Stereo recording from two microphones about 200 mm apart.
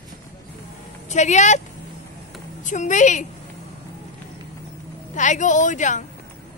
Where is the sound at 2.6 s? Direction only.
40° left (ahead or behind).